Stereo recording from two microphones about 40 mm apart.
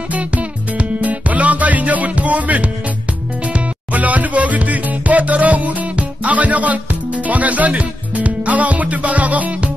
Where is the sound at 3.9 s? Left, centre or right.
Right.